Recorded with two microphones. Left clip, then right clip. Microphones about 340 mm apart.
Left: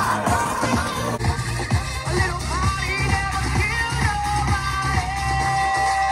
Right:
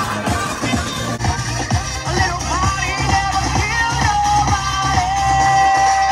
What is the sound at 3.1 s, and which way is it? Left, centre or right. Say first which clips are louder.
Music: right 7 dB; centre.